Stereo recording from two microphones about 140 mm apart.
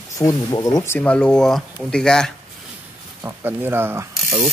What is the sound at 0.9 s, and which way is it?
Speech, 10° left (ahead or behind).